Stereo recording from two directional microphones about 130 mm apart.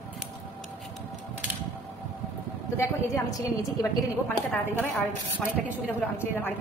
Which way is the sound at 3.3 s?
25° left (ahead or behind).